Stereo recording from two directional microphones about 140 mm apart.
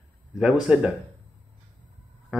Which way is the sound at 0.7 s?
5° right (ahead or behind).